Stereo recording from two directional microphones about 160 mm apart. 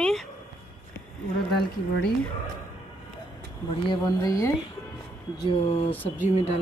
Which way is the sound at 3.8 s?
25° left (ahead or behind).